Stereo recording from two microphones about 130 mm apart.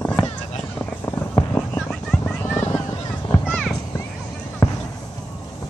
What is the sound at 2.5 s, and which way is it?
Vehicle, 20° left (ahead or behind).